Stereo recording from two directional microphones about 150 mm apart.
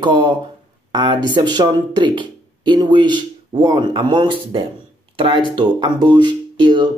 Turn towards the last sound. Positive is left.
turn(degrees=-30)  # may be behind; listen again after turning